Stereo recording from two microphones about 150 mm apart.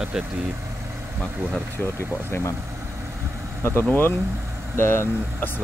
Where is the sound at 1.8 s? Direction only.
10° left (ahead or behind).